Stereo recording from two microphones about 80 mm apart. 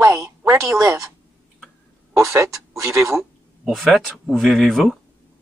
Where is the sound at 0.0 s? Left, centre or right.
Right.